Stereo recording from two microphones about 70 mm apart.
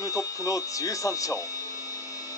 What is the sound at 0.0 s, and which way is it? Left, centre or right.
Speech, left.